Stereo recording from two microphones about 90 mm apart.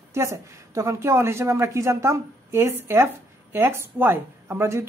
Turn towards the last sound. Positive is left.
turn(degrees=-30)  # may be behind; listen again after turning